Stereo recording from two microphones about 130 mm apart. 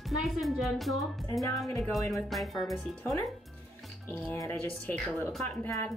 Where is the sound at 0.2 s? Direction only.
Centre (ahead or behind).